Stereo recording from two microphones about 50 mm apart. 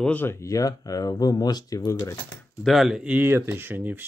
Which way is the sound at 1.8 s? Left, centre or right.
Left.